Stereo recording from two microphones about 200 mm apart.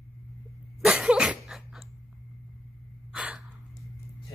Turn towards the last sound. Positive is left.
turn(degrees=-5)  # may be behind; listen again after turning